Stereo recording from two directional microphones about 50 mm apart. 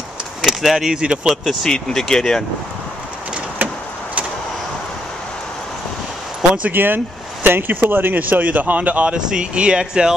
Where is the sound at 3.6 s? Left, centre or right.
Right.